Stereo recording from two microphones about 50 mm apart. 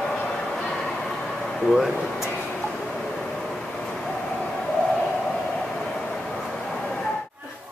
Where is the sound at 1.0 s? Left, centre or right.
Centre.